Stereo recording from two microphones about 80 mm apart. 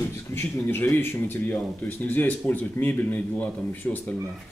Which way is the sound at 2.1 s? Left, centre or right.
Left.